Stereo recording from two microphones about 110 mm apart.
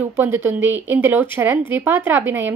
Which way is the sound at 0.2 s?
20° right (ahead or behind).